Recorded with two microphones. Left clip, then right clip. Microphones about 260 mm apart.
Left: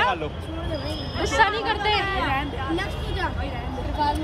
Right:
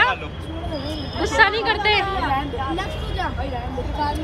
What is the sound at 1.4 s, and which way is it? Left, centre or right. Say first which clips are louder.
Speech: right 4 dB; centre.